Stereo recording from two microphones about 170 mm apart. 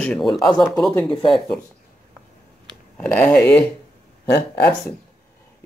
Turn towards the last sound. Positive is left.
turn(degrees=15)  # may be behind; listen again after turning